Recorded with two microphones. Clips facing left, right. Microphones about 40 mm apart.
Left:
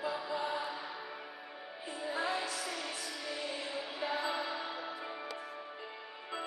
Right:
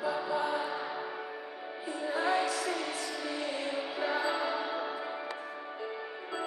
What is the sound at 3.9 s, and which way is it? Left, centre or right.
Music, centre.